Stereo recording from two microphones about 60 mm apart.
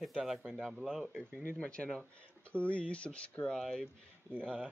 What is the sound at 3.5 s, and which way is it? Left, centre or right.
Speech, centre.